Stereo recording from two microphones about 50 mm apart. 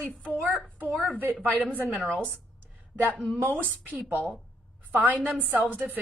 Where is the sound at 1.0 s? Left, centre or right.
Right.